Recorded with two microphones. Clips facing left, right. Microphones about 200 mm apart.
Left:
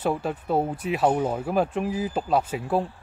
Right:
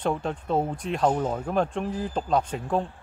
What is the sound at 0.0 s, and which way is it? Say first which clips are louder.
Speech: left 1 dB; 5° left (ahead or behind).